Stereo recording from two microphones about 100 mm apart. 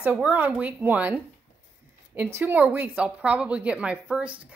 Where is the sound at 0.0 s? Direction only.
15° right (ahead or behind).